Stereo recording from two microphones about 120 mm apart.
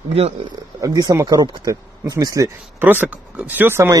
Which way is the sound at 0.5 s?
35° right (ahead or behind).